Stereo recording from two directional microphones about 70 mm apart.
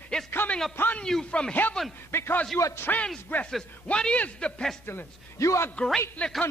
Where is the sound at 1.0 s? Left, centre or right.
Centre.